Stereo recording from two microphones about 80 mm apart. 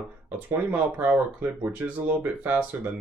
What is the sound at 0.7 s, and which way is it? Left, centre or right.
Speech, right.